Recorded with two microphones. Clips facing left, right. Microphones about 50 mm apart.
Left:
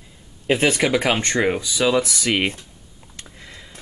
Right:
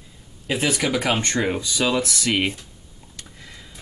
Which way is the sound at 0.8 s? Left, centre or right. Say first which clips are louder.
Left 3 dB; left.